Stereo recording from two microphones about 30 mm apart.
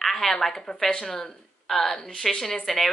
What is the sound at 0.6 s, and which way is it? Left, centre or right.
A woman's voice, left.